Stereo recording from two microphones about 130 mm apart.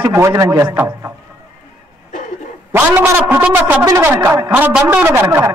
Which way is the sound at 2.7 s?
15° right (ahead or behind).